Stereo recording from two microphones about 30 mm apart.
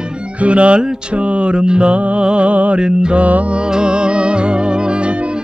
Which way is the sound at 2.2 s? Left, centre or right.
Right.